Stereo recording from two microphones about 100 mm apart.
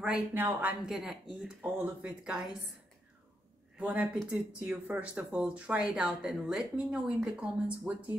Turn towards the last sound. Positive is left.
turn(degrees=-10)  # may be behind; listen again after turning